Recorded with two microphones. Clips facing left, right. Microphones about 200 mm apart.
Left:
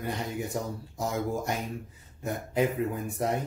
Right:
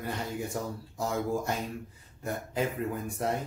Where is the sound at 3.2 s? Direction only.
15° left (ahead or behind).